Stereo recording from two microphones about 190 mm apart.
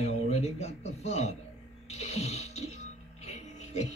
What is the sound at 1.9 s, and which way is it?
Music, 35° left (ahead or behind).